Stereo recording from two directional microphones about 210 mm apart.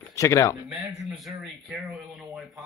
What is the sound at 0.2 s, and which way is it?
Speech, 15° left (ahead or behind).